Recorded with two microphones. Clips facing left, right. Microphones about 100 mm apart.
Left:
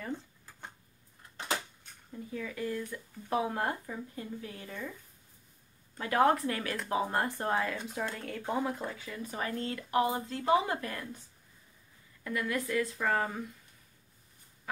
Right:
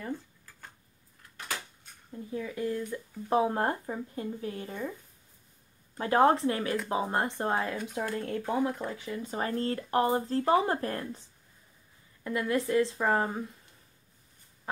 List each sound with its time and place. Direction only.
1.3 s a sound: 25° left (ahead or behind)
2.3 s speech: 25° right (ahead or behind)
5.9 s speech: 30° right (ahead or behind)
8.5 s speech: 15° left (ahead or behind)
8.9 s speech: 20° right (ahead or behind); by 11.1 s 40° right (ahead or behind)
12.2 s speech: 25° right (ahead or behind)